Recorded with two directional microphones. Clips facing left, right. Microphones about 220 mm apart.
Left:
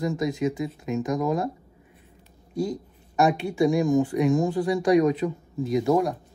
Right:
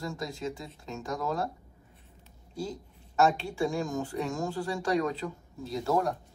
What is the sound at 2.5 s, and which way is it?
Speech, 15° left (ahead or behind).